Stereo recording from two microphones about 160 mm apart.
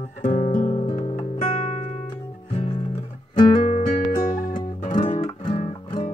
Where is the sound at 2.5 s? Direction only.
40° left (ahead or behind).